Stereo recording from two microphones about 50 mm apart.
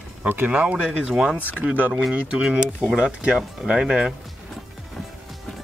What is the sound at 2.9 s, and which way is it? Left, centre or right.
Speech, centre.